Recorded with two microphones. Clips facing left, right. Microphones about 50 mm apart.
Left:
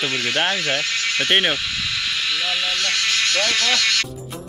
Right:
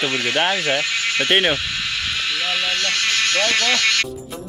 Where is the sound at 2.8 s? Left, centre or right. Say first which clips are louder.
Right 1 dB; right.